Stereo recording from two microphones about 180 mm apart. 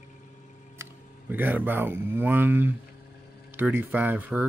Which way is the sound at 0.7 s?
10° right (ahead or behind).